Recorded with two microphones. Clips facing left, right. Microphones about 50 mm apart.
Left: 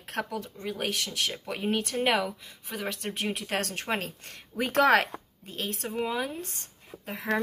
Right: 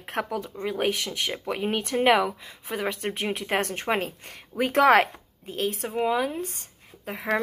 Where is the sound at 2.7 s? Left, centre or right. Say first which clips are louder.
Right 5 dB; right.